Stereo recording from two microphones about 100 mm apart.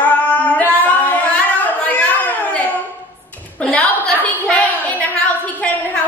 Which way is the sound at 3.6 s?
10° left (ahead or behind).